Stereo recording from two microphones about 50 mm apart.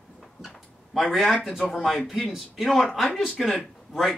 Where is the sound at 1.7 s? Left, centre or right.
Centre.